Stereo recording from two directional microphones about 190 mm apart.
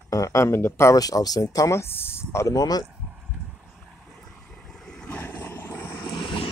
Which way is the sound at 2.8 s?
5° right (ahead or behind).